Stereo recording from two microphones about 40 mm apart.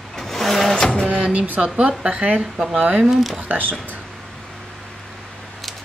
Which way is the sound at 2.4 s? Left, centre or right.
Centre.